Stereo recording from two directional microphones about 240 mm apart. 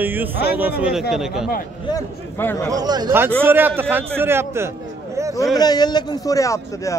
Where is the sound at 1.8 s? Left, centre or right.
Centre.